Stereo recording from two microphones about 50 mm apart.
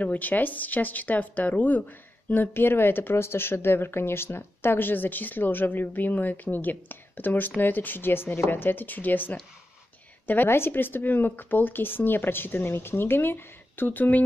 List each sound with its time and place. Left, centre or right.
0.0 s a woman's voice: left